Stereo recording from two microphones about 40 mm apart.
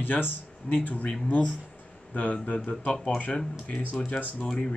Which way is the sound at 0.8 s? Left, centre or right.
Left.